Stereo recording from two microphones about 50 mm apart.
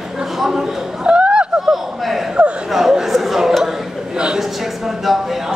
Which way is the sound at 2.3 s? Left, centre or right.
Right.